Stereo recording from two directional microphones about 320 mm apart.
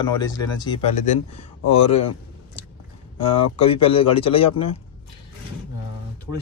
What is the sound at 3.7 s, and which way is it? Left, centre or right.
Speech, centre.